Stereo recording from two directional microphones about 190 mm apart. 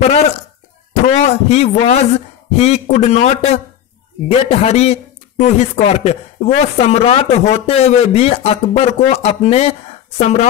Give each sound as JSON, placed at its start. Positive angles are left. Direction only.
{"t": 1.0, "sound": "a man's voice", "side_deg": 35}